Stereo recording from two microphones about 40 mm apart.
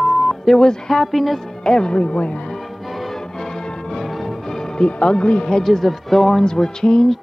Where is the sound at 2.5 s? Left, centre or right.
Centre.